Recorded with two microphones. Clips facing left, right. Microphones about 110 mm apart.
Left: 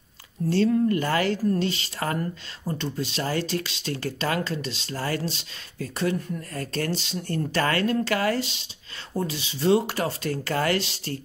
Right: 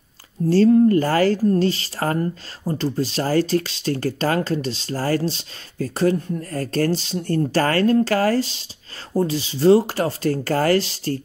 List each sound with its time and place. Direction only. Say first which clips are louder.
0.5 s speech: right 7 dB; 35° right (ahead or behind)